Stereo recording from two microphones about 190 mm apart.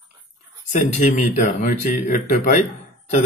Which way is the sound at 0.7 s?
40° left (ahead or behind).